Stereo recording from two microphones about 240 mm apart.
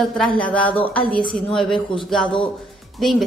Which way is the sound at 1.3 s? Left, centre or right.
Centre.